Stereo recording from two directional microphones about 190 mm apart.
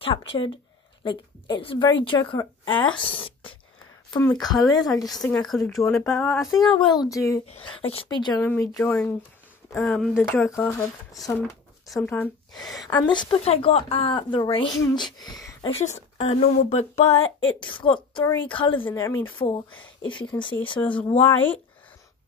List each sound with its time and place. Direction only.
0.0 s speech: 30° left (ahead or behind)
3.0 s a sound: 30° left (ahead or behind)
4.1 s speech: 20° left (ahead or behind)
5.5 s speech: centre (ahead or behind)
5.8 s speech: 15° left (ahead or behind); by 6.7 s centre (ahead or behind)
6.8 s speech: 20° left (ahead or behind)
7.4 s speech: 30° left (ahead or behind)
8.4 s speech: 10° left (ahead or behind)
11.9 s speech: 5° left (ahead or behind)
12.7 s speech: 20° left (ahead or behind)
16.2 s a woman's voice: 35° left (ahead or behind)
18.9 s speech: 15° left (ahead or behind)
20.8 s speech: 10° left (ahead or behind)